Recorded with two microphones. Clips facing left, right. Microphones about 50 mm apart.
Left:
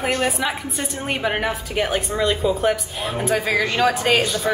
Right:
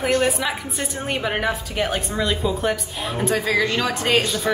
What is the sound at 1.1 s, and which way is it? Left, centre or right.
A woman's voice, centre.